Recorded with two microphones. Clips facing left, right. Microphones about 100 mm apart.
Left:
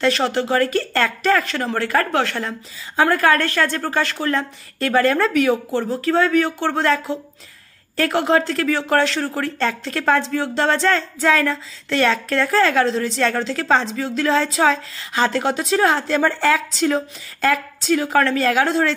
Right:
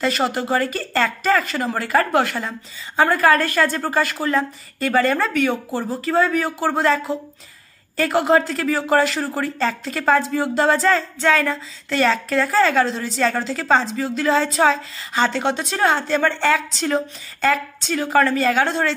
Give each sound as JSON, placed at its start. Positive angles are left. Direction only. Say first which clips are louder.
{"t": 0.0, "sound": "speech", "louder": "left 2 dB", "side_deg": -5}